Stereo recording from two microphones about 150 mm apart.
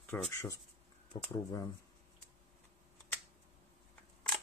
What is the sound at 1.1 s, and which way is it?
Speech, 35° left (ahead or behind).